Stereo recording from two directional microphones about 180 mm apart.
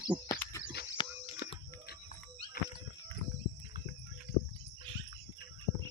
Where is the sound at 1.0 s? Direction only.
25° left (ahead or behind).